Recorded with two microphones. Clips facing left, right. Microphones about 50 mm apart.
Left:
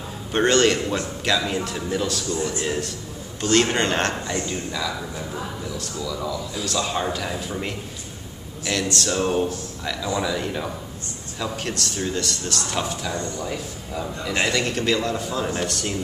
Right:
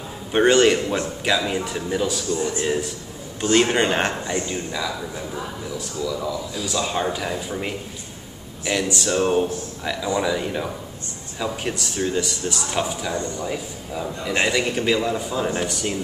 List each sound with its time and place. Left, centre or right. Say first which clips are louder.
0.3 s a man's voice: right 3 dB; centre
2.3 s speech: right 2 dB; right
2.6 s a man's voice: right 3 dB; centre